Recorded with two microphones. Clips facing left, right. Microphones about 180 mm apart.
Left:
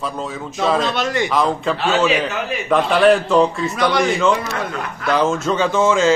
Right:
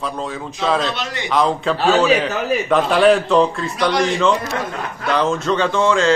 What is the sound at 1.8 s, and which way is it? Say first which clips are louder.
Speech: right 4 dB; 40° right (ahead or behind).